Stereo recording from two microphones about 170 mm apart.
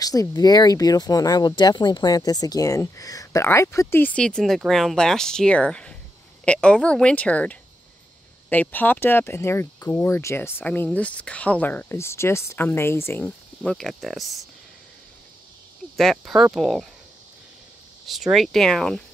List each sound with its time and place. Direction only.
0.0 s speech: 20° left (ahead or behind)
13.7 s speech: centre (ahead or behind)
16.0 s speech: centre (ahead or behind)
18.0 s speech: centre (ahead or behind)